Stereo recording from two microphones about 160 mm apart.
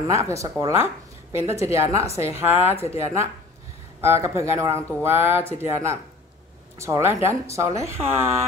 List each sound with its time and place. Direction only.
0.1 s speech: 20° right (ahead or behind)
4.0 s speech: 15° right (ahead or behind)